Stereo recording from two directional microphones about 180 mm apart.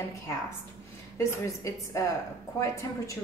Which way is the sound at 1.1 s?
15° left (ahead or behind).